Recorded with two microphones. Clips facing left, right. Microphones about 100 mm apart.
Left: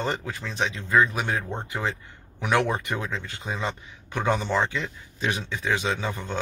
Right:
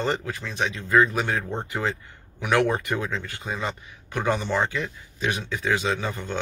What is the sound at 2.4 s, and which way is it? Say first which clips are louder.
Speech: right 2 dB; 20° left (ahead or behind).